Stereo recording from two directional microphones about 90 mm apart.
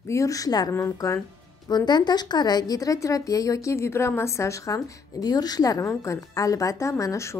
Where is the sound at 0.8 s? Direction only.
35° left (ahead or behind).